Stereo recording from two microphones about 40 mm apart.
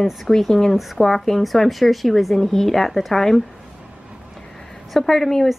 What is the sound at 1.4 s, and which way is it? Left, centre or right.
Speech, centre.